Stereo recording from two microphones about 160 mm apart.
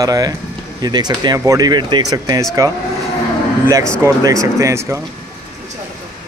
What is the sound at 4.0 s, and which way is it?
A man's voice, 20° right (ahead or behind).